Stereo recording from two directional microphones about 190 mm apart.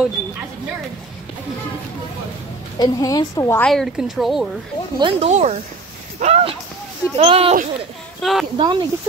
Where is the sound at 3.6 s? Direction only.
Centre (ahead or behind).